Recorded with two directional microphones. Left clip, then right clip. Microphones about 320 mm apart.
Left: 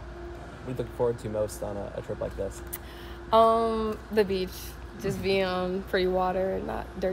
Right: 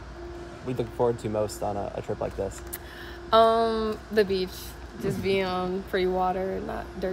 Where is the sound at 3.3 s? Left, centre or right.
Centre.